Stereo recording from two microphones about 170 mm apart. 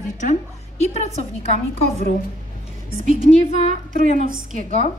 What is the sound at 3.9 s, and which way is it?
Speech, 50° right (ahead or behind).